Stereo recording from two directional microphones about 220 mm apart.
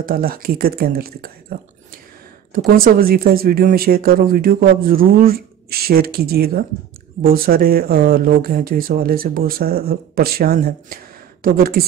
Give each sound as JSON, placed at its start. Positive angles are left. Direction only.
{"t": 0.0, "sound": "speech", "side_deg": -40}
{"t": 2.5, "sound": "speech", "side_deg": -40}